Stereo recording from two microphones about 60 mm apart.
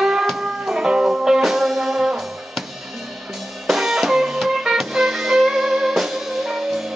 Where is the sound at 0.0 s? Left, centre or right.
Centre.